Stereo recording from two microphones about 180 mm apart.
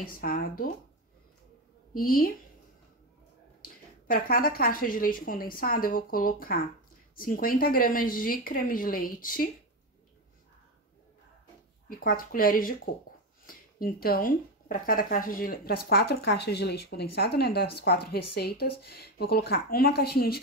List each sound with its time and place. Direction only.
0.0 s a woman's voice: 55° left (ahead or behind)
2.0 s a woman's voice: 55° left (ahead or behind)
3.6 s a woman's voice: 55° left (ahead or behind)
11.9 s a woman's voice: 50° left (ahead or behind)